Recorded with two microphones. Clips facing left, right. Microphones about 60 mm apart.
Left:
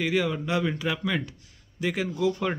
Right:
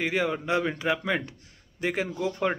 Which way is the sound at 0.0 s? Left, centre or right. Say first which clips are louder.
Left 1 dB; right.